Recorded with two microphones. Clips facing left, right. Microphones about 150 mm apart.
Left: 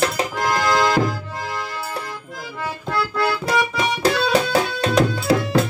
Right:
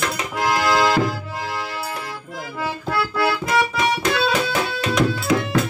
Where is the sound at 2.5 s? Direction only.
5° right (ahead or behind).